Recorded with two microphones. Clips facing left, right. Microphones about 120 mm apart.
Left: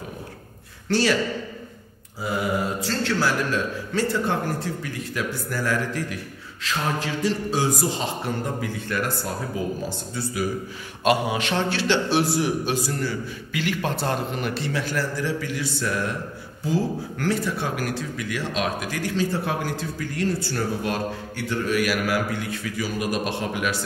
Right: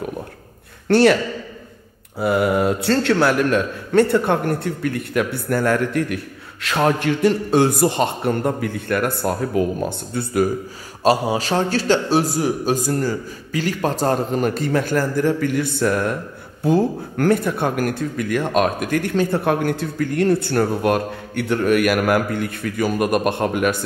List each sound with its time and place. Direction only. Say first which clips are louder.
0.8 s a man's voice: right 8 dB; 60° right (ahead or behind)
2.1 s speech: right 8 dB; 60° right (ahead or behind)
11.1 s a man's voice: right 4 dB; 35° right (ahead or behind); by 23.8 s 50° right (ahead or behind)